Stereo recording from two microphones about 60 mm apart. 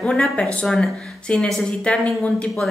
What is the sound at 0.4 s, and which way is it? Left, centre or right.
Speech, centre.